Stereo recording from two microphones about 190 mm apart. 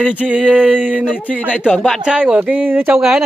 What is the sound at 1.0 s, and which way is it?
Speech, 5° left (ahead or behind).